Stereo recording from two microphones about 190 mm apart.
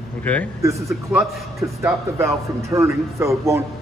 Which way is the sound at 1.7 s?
15° right (ahead or behind).